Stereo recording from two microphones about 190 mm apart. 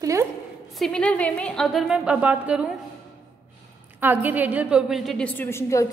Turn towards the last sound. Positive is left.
turn(degrees=15)  # may be behind; listen again after turning